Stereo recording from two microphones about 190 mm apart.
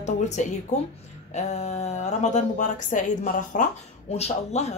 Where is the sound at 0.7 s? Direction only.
40° left (ahead or behind).